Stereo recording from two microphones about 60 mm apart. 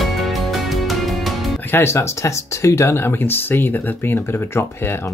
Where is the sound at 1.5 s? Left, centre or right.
Left.